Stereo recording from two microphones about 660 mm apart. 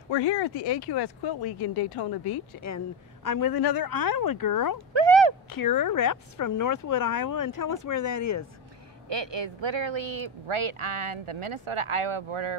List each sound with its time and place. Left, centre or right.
0.1 s speech: left
4.7 s a sound: right
5.5 s speech: left
9.1 s speech: right